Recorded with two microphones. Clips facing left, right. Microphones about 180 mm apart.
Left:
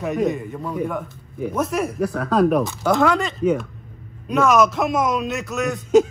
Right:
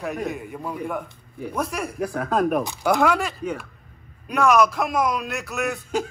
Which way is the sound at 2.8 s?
10° right (ahead or behind).